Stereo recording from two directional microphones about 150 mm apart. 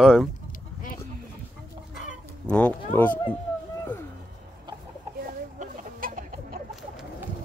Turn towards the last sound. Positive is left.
turn(degrees=-65)  # may be behind; listen again after turning